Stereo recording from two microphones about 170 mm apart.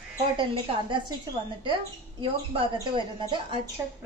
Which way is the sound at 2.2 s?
30° right (ahead or behind).